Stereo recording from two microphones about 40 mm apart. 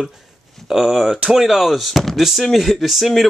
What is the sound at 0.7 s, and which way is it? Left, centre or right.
Speech, centre.